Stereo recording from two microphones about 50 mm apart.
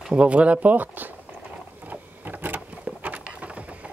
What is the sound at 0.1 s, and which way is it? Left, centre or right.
Speech, right.